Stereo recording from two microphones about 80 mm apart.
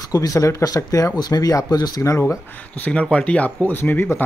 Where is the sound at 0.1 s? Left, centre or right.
Left.